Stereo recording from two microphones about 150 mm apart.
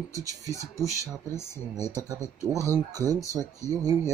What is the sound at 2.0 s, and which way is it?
Speech, 25° right (ahead or behind).